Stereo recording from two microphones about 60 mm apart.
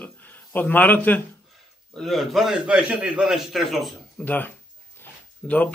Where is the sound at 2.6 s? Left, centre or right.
Centre.